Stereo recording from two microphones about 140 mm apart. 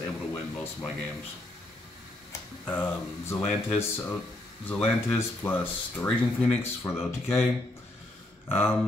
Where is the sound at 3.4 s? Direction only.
45° left (ahead or behind).